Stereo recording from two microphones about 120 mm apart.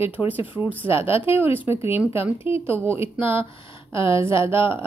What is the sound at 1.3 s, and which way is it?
Speech, 15° right (ahead or behind).